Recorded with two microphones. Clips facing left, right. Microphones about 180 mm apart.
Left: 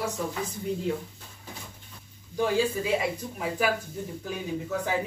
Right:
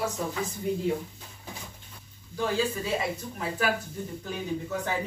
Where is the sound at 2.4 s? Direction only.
10° left (ahead or behind).